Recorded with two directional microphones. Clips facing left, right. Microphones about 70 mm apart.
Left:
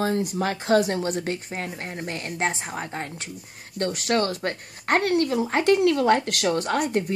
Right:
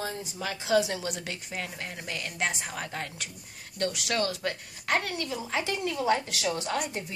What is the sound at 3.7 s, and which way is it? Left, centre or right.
Speech, left.